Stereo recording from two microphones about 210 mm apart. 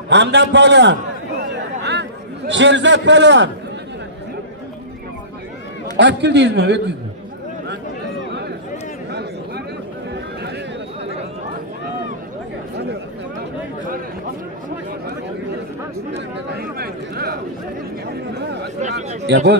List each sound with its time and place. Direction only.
0.1 s a man's voice: 55° right (ahead or behind)
1.4 s chatter: 55° right (ahead or behind)
5.9 s a man's voice: 55° right (ahead or behind)
16.5 s chatter: 45° right (ahead or behind)
18.8 s speech: 35° right (ahead or behind)
19.2 s a man's voice: 55° right (ahead or behind)